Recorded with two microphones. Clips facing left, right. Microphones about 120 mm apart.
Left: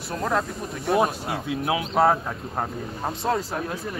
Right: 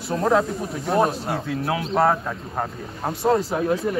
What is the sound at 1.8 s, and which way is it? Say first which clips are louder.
Speech: even; centre (ahead or behind).